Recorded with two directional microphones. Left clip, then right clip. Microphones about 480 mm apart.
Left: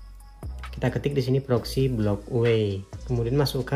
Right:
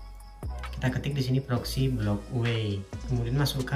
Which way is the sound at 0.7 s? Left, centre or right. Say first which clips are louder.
Left 7 dB; centre.